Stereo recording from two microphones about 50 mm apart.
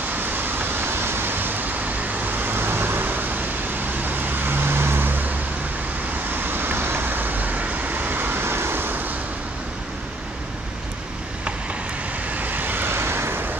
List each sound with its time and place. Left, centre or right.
0.2 s vehicle: right
6.3 s vehicle: right
12.3 s vehicle: right